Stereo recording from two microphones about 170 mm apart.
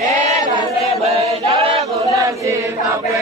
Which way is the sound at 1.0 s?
40° right (ahead or behind).